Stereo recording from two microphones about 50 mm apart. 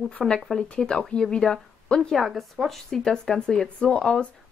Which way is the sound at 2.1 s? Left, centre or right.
Centre.